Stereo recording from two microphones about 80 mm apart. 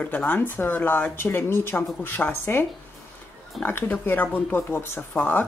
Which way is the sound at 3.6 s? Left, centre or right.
Left.